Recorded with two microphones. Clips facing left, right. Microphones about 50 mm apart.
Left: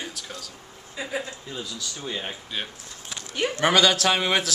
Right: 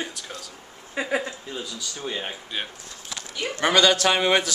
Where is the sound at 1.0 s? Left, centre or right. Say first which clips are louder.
Right 5 dB; right.